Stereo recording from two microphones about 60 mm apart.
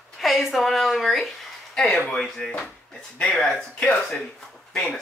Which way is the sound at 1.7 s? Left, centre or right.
Centre.